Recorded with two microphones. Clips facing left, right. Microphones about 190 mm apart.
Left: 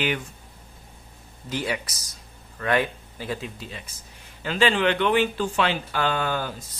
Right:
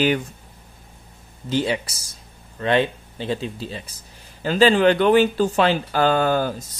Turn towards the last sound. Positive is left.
turn(degrees=-40)  # may be behind; listen again after turning